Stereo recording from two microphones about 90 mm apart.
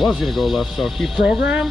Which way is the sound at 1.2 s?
15° right (ahead or behind).